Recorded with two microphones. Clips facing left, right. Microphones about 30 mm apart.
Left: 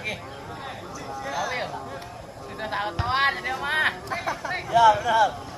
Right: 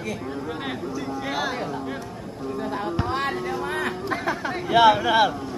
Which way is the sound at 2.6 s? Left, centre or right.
Left.